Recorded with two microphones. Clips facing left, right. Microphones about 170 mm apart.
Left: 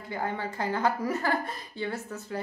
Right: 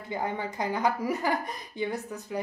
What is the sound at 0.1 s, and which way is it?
A woman's voice, 15° right (ahead or behind).